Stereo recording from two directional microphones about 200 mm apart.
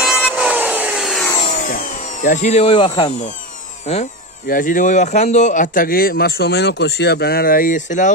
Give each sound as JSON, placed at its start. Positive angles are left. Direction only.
{"t": 0.4, "sound": "wood", "side_deg": -5}
{"t": 1.3, "sound": "a sound", "side_deg": 35}
{"t": 3.8, "sound": "speech", "side_deg": 35}